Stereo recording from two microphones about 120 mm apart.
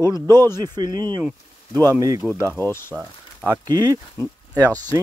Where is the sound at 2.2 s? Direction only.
Centre (ahead or behind).